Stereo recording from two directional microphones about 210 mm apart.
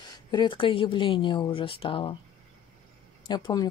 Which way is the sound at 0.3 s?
20° left (ahead or behind).